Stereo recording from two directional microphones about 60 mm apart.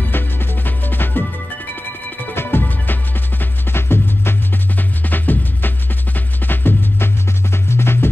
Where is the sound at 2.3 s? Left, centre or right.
Left.